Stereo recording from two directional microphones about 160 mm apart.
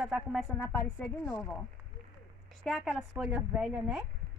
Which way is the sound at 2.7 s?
Centre (ahead or behind).